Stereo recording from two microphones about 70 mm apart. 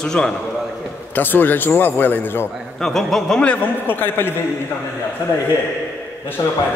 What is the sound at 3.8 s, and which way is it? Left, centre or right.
Speech, left.